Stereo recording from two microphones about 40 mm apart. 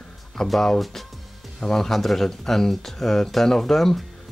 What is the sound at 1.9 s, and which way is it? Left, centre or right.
Speech, centre.